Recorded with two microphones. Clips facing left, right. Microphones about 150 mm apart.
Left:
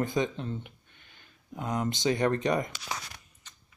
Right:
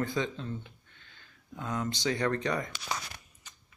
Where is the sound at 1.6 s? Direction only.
20° left (ahead or behind).